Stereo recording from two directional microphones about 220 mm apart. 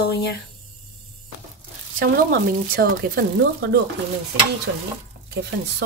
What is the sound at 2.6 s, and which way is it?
Speech, 45° right (ahead or behind).